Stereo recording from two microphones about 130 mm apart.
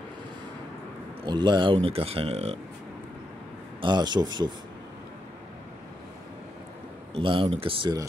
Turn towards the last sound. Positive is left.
turn(degrees=-45)  # may be behind; listen again after turning